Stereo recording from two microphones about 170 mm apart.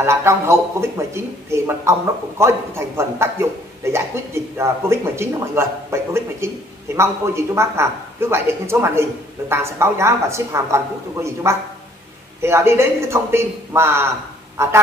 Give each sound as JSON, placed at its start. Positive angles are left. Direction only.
{"t": 0.0, "sound": "speech", "side_deg": -15}